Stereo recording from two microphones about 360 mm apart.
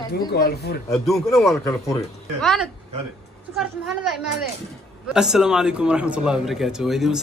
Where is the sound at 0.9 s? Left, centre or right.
Centre.